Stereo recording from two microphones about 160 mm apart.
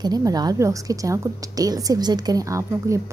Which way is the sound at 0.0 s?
25° right (ahead or behind).